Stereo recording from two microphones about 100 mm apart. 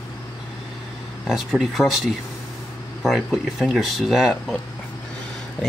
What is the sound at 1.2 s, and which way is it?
Speech, 5° right (ahead or behind).